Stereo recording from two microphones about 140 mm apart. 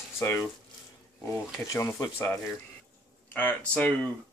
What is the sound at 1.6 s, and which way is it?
Speech, 25° left (ahead or behind).